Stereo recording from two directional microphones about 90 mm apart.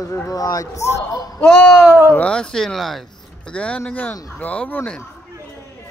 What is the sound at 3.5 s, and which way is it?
A man's voice, 10° left (ahead or behind).